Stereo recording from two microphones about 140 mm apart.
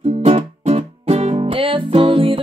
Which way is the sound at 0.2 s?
50° right (ahead or behind).